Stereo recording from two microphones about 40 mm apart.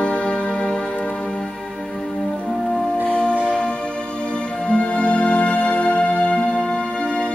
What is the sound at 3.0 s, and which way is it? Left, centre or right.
Music, left.